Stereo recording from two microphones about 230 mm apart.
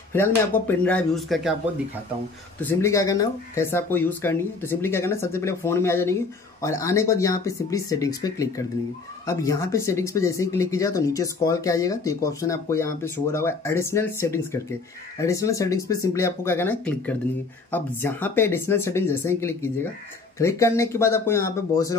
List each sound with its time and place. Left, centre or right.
0.1 s speech: centre
2.6 s speech: centre